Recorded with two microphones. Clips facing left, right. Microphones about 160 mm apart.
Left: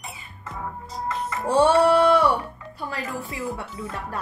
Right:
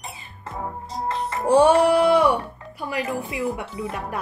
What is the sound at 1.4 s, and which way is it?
Music, 10° right (ahead or behind).